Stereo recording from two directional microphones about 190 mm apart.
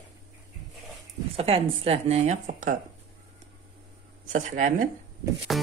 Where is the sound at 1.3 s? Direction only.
30° right (ahead or behind).